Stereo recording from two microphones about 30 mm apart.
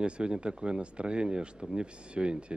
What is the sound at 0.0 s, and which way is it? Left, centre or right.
Speech, right.